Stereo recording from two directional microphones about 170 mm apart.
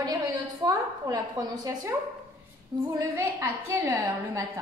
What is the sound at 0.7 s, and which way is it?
A woman's voice, 20° right (ahead or behind).